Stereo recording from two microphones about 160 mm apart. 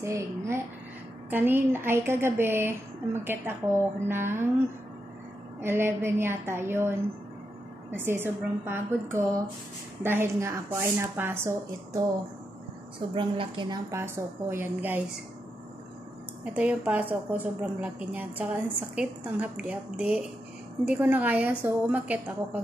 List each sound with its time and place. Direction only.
0.0 s a woman's voice: 15° right (ahead or behind)
5.6 s a woman's voice: 15° right (ahead or behind)
13.1 s a woman's voice: 30° right (ahead or behind)
13.8 s a woman's voice: 15° right (ahead or behind)
16.5 s a woman's voice: 10° right (ahead or behind)